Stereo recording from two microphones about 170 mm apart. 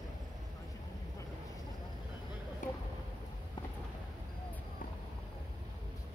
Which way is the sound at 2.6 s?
50° left (ahead or behind).